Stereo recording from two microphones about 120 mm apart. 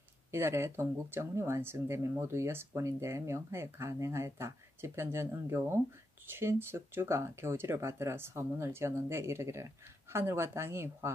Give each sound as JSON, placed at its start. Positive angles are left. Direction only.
{"t": 0.3, "sound": "speech", "side_deg": -20}